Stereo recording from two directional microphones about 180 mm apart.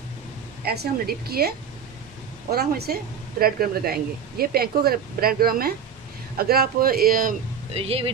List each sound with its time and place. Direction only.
0.7 s speech: 60° right (ahead or behind)
2.5 s speech: 60° right (ahead or behind)
7.7 s speech: 35° right (ahead or behind)